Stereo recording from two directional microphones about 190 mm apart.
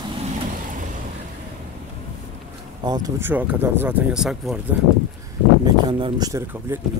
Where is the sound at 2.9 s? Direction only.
20° right (ahead or behind); by 4.6 s centre (ahead or behind).